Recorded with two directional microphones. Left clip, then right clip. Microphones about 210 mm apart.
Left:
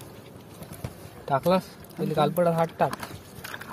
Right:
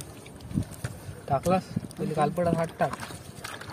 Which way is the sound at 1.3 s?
20° left (ahead or behind).